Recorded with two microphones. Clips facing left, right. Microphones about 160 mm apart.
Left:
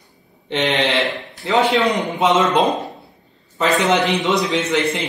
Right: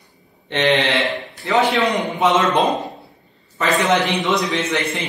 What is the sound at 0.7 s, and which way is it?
Speech, centre (ahead or behind).